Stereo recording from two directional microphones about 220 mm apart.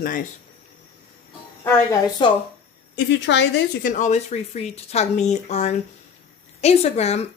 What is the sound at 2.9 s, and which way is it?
Speech, 55° left (ahead or behind).